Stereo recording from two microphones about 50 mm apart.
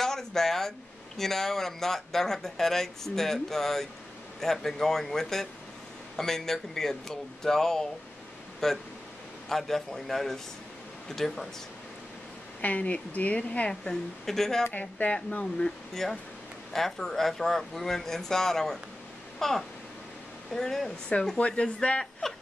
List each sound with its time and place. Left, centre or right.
0.0 s speech: centre
12.6 s a woman's voice: left; by 14.7 s centre
14.7 s speech: left
15.9 s speech: centre
21.4 s a woman's voice: left
22.2 s speech: centre